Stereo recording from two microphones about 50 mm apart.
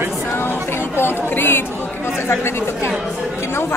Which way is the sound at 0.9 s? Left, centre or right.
Left.